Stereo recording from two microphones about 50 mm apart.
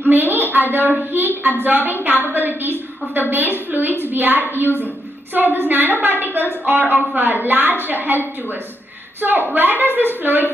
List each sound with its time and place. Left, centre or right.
0.1 s a woman's voice: right
9.5 s a woman's voice: right